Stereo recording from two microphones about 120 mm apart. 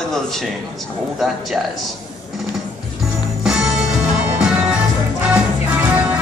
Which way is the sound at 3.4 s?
5° right (ahead or behind).